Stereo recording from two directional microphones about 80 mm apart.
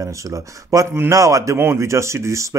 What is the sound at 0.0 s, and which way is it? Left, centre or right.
Speech, right.